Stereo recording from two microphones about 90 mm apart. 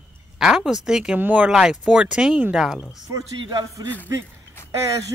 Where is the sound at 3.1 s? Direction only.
40° right (ahead or behind).